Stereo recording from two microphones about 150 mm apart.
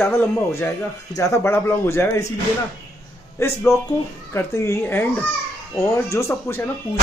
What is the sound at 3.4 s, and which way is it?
Speech, 15° left (ahead or behind).